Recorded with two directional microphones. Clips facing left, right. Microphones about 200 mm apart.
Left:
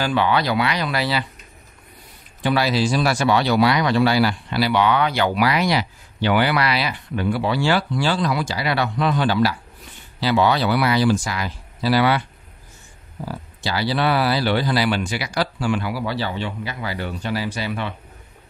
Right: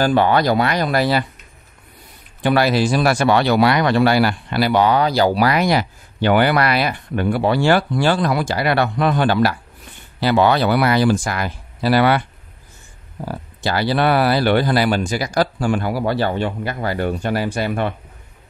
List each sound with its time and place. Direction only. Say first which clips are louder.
0.0 s speech: right 5 dB; 45° right (ahead or behind)
2.4 s speech: right 4 dB; 55° right (ahead or behind)